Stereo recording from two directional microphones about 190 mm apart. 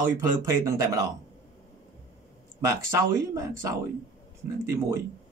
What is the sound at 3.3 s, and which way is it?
Speech, 15° right (ahead or behind).